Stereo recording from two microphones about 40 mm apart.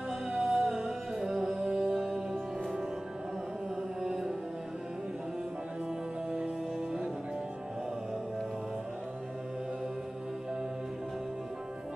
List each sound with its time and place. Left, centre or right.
0.3 s music: centre
4.0 s music: centre